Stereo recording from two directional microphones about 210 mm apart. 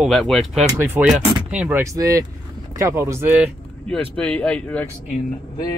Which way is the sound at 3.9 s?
5° left (ahead or behind).